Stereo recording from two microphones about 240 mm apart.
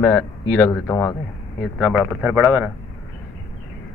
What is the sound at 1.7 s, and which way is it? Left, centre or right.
Speech, centre.